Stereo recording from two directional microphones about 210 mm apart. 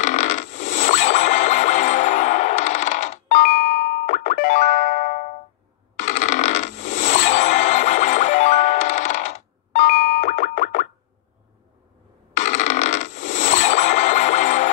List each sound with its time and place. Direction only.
0.0 s scrape: 35° left (ahead or behind)
5.9 s coin: 35° left (ahead or behind)
12.4 s a sound: 35° left (ahead or behind)